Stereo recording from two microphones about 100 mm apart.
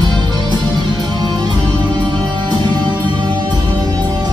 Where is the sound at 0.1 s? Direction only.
45° right (ahead or behind).